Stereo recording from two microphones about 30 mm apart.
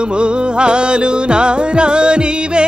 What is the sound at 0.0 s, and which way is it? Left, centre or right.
Music, right.